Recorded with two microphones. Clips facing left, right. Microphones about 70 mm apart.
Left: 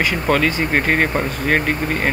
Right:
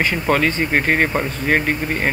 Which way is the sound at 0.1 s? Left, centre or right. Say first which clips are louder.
Even; centre.